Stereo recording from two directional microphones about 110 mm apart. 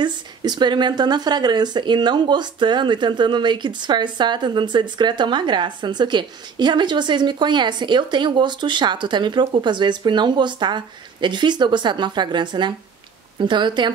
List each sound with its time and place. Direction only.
0.0 s speech: 40° right (ahead or behind)